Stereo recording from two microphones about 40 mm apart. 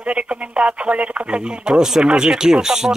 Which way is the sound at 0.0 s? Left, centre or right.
Right.